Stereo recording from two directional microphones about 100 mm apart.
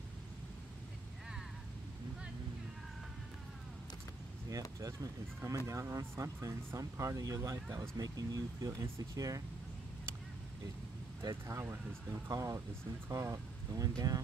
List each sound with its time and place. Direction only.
4.5 s speech: 35° right (ahead or behind)
11.2 s speech: 30° right (ahead or behind)